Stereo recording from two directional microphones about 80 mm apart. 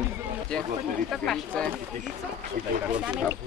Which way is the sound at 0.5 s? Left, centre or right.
Centre.